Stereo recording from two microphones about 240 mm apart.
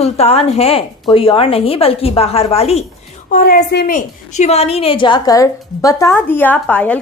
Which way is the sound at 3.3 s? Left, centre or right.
Left.